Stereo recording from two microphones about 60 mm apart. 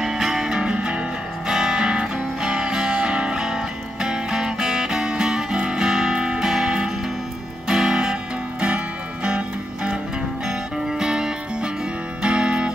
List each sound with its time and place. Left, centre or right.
0.0 s music: centre
10.9 s music: centre